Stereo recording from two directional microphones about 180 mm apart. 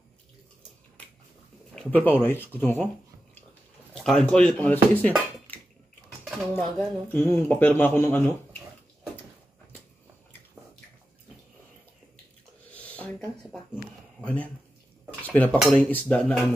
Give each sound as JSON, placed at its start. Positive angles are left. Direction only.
{"t": 1.8, "sound": "speech", "side_deg": 10}
{"t": 3.9, "sound": "speech", "side_deg": 5}
{"t": 6.5, "sound": "speech", "side_deg": 10}
{"t": 12.7, "sound": "a sound", "side_deg": 5}
{"t": 14.2, "sound": "speech", "side_deg": 10}